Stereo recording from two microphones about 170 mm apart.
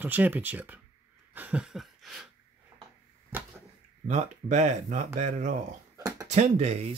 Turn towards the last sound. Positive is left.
turn(degrees=-45)  # may be behind; listen again after turning